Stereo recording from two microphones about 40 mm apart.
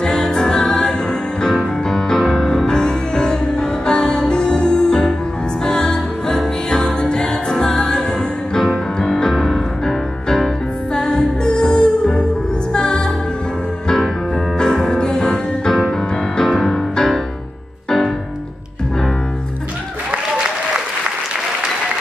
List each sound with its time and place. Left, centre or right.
0.0 s music: centre
14.6 s music: centre